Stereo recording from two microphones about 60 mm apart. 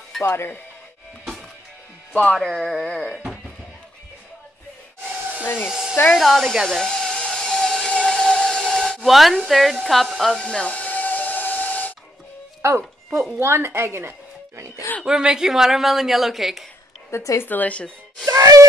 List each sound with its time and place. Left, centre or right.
0.2 s speech: left
2.3 s speech: centre
5.4 s speech: left
5.7 s hair dryer: centre
6.0 s a woman's voice: centre
6.8 s a sound: centre
10.4 s hiss: centre
12.6 s speech: right
15.0 s a woman's voice: centre
17.1 s a woman's voice: left
17.4 s speech: left
18.2 s music: right